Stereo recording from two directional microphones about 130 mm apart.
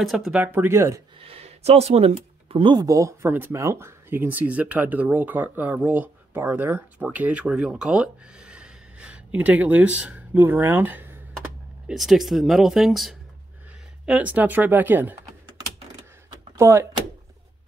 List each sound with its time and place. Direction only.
0.0 s speech: centre (ahead or behind)
0.4 s speech: 15° right (ahead or behind)
1.2 s speech: 50° right (ahead or behind); by 11.1 s 15° right (ahead or behind)
11.9 s speech: centre (ahead or behind)
16.5 s speech: 20° right (ahead or behind)